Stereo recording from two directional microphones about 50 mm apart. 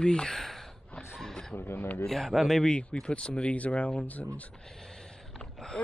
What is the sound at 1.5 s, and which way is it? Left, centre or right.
Speech, left.